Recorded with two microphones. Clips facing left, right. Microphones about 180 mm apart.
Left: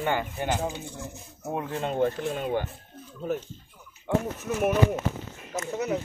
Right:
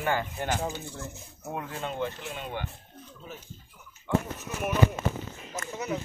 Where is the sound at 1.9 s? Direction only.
45° left (ahead or behind).